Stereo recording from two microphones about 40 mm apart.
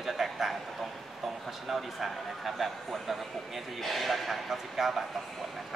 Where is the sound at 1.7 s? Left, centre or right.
Centre.